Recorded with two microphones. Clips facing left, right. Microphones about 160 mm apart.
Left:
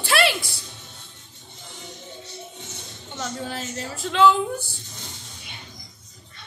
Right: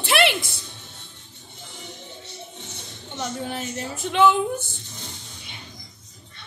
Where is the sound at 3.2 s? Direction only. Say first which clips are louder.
Right 1 dB; 15° right (ahead or behind).